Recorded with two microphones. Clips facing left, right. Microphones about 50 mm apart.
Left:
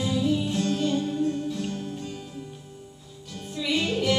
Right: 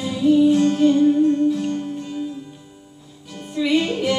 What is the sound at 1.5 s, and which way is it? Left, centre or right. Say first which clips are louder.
Music: right 10 dB; centre.